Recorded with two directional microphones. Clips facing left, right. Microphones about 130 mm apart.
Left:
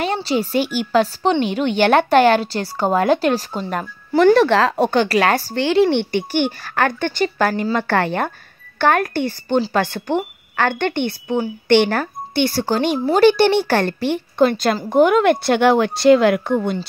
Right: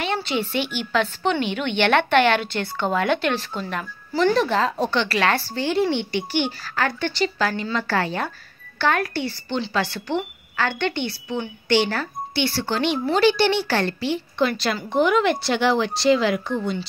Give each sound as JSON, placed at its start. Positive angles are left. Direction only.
{"t": 0.0, "sound": "a woman's voice", "side_deg": 40}
{"t": 4.1, "sound": "speech", "side_deg": 60}
{"t": 5.0, "sound": "speech", "side_deg": 40}
{"t": 5.6, "sound": "speech", "side_deg": 85}